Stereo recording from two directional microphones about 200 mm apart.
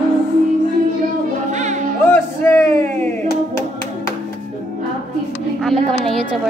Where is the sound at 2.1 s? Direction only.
10° left (ahead or behind).